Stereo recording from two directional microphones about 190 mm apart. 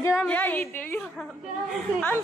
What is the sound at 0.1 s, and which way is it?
A woman's voice, 5° left (ahead or behind).